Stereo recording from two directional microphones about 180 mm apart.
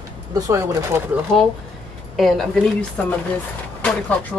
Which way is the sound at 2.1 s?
Centre (ahead or behind).